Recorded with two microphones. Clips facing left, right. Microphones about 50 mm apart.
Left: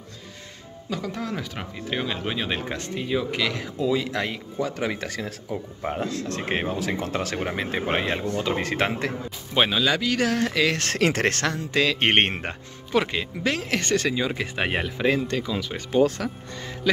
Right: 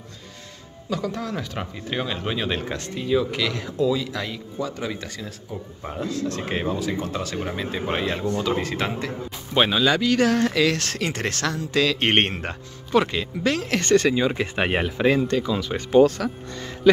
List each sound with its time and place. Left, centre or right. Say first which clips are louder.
0.8 s speech: right 2 dB; centre
3.9 s speech: left 1 dB; left
4.6 s speech: left 2 dB; left
5.5 s speech: left 4 dB; left
5.9 s speech: right 1 dB; left
6.8 s speech: even; left
7.8 s speech: even; left
8.5 s a man's voice: left 1 dB; left
9.5 s speech: right 2 dB; centre
11.0 s speech: left 5 dB; left
11.4 s speech: right 1 dB; left
12.9 s speech: right 3 dB; centre
14.0 s speech: right 4 dB; centre
16.8 s speech: right 7 dB; centre